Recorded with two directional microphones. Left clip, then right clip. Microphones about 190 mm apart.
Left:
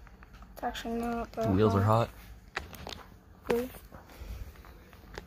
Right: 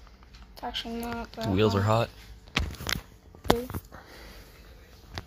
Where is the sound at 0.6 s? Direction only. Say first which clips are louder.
Even; 35° left (ahead or behind).